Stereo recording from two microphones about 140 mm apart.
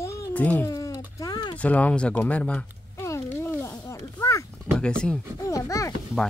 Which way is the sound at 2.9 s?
20° left (ahead or behind).